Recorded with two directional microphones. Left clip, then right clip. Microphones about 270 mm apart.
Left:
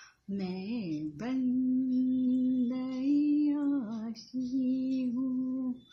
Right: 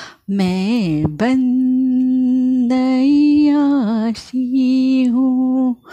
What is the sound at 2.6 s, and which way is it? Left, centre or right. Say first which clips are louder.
Music: right 17 dB; right.